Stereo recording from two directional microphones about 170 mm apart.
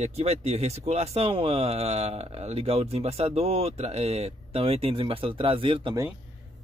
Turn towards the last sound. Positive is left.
turn(degrees=-30)  # may be behind; listen again after turning